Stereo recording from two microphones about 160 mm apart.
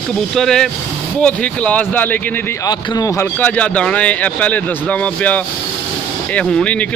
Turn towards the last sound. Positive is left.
turn(degrees=5)  # may be behind; listen again after turning